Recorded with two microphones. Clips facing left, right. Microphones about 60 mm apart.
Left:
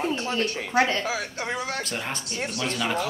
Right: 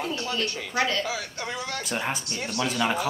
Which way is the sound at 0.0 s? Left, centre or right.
Left.